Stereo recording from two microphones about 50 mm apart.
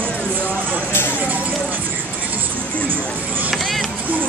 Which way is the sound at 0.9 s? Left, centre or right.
Left.